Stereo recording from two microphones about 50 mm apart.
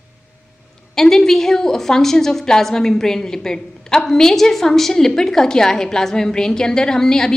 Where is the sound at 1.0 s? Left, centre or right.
Centre.